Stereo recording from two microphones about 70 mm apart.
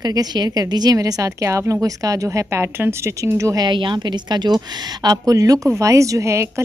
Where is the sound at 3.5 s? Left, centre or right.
Right.